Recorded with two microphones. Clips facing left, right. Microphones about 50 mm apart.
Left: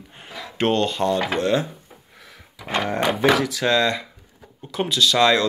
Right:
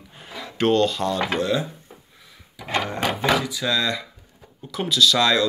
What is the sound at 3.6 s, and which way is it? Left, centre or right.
Speech, left.